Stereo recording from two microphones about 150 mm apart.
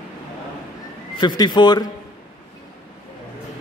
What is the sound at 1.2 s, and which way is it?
Speech, 30° left (ahead or behind).